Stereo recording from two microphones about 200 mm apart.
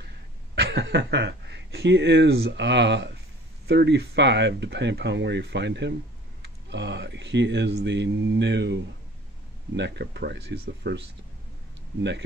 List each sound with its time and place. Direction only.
0.6 s speech: 55° right (ahead or behind)